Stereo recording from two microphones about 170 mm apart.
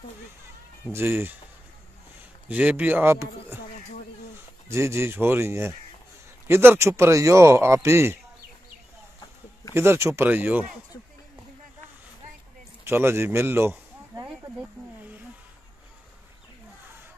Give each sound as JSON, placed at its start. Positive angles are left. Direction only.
{"t": 0.8, "sound": "a man's voice", "side_deg": -15}
{"t": 2.4, "sound": "a man's voice", "side_deg": -10}
{"t": 4.6, "sound": "a man's voice", "side_deg": -15}
{"t": 9.8, "sound": "a man's voice", "side_deg": -15}
{"t": 12.8, "sound": "a sound", "side_deg": -15}